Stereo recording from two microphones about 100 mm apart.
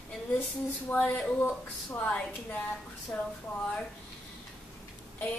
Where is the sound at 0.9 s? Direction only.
15° left (ahead or behind).